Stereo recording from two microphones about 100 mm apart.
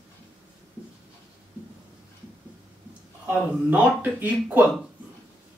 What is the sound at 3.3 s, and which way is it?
Speech, 15° right (ahead or behind).